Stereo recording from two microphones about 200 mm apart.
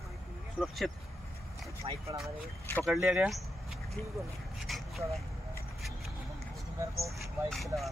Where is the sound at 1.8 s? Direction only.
25° right (ahead or behind).